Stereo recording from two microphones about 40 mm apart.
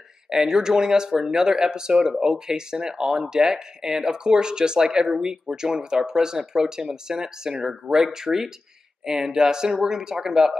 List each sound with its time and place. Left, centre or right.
0.3 s speech: centre